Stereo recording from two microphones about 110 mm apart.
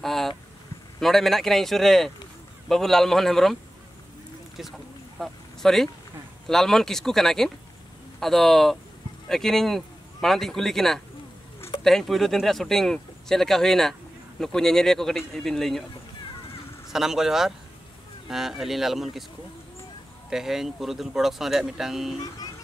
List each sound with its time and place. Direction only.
0.0 s vehicle: centre (ahead or behind)
0.9 s speech: 5° left (ahead or behind)
5.2 s speech: centre (ahead or behind)
16.9 s speech: 5° right (ahead or behind)
20.2 s speech: 5° right (ahead or behind)